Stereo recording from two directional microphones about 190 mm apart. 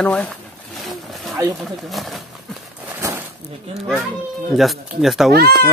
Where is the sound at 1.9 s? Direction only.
Centre (ahead or behind).